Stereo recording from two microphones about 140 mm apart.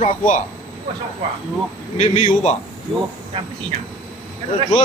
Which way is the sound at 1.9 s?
50° left (ahead or behind).